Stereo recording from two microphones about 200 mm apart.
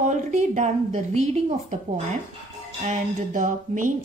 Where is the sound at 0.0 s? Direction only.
40° right (ahead or behind).